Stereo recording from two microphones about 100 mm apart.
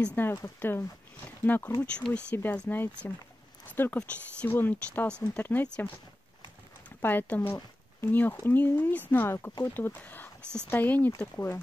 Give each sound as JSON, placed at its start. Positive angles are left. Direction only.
{"t": 0.0, "sound": "speech", "side_deg": 20}
{"t": 2.3, "sound": "speech", "side_deg": 20}
{"t": 7.0, "sound": "speech", "side_deg": 20}